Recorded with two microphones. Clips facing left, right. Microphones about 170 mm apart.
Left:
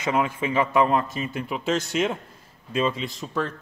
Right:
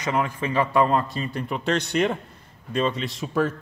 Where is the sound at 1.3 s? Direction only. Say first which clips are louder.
Right 1 dB; 5° left (ahead or behind).